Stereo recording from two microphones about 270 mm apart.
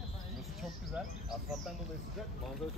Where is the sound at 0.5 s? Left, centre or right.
Centre.